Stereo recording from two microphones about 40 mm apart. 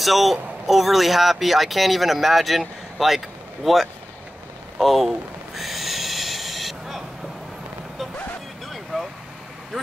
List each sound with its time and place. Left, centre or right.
0.0 s speech: centre
4.7 s a sound: centre
8.9 s vehicle: centre